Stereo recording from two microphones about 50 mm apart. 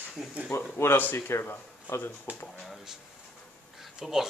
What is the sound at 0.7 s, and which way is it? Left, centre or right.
Speech, left.